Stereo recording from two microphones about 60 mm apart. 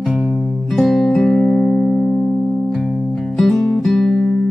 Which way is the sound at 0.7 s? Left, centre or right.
Centre.